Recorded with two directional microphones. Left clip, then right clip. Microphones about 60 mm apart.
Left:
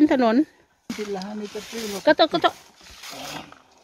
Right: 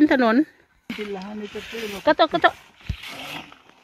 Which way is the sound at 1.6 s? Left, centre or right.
Centre.